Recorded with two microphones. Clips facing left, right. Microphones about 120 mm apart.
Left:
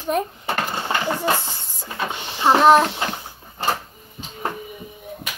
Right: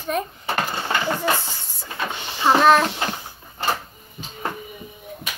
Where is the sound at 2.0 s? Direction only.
15° left (ahead or behind).